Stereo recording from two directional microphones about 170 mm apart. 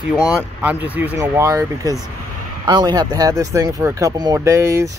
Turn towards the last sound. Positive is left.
turn(degrees=-15)  # may be behind; listen again after turning